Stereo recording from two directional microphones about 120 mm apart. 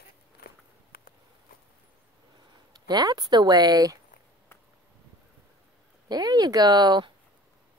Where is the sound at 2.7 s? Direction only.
35° right (ahead or behind).